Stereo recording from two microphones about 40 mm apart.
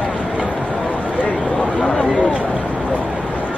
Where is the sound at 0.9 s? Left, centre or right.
Left.